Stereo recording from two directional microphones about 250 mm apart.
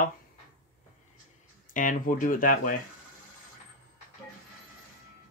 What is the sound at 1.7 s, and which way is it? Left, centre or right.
Speech, left.